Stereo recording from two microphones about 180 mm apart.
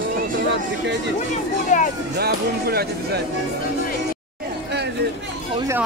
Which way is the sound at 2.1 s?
60° right (ahead or behind).